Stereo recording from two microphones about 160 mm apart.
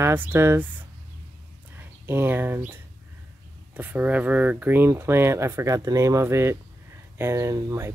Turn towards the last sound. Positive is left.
turn(degrees=-20)  # may be behind; listen again after turning